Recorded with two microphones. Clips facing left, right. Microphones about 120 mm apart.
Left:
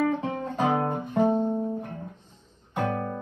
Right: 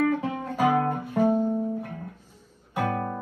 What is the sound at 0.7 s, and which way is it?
Guitar, 20° left (ahead or behind).